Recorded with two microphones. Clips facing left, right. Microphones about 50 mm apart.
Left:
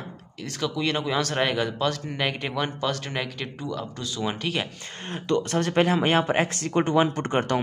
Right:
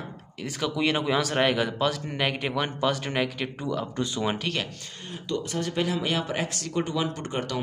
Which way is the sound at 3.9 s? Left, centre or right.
Right.